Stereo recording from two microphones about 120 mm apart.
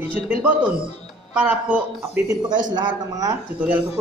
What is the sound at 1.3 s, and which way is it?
Speech, 10° right (ahead or behind).